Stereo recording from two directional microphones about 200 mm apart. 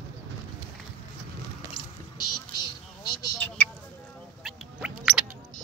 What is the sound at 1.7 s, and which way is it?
Vehicle, 20° left (ahead or behind).